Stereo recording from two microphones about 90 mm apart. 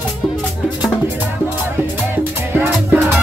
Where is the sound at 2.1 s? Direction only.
20° right (ahead or behind).